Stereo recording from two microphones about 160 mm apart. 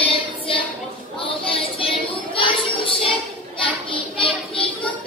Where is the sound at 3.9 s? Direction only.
35° left (ahead or behind).